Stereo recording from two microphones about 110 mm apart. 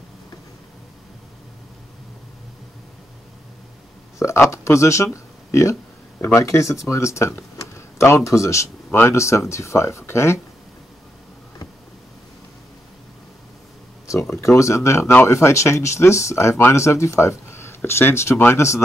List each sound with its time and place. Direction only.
4.2 s speech: 25° left (ahead or behind)
14.3 s speech: 25° left (ahead or behind)